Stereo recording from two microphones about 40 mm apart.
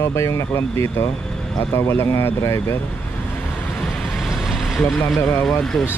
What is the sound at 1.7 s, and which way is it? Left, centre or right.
Speech, left.